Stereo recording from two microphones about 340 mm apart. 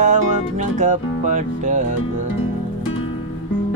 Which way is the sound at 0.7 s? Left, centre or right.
Right.